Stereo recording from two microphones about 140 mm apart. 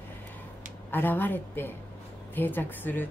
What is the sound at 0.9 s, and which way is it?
A woman's voice, 15° left (ahead or behind).